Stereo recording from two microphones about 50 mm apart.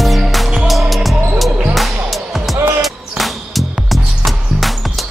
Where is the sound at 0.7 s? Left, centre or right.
Centre.